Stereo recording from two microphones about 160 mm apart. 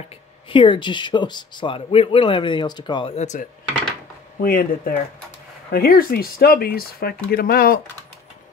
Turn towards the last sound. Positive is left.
turn(degrees=70)  # may be behind; listen again after turning